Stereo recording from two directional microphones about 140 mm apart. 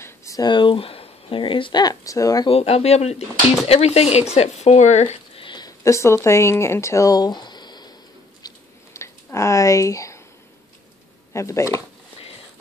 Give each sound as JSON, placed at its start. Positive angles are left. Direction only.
{"t": 0.0, "sound": "speech", "side_deg": 25}
{"t": 2.5, "sound": "speech", "side_deg": 50}
{"t": 8.4, "sound": "a sound", "side_deg": 25}
{"t": 11.3, "sound": "speech", "side_deg": 20}